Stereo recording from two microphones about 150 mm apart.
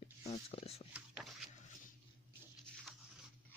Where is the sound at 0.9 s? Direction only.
5° right (ahead or behind).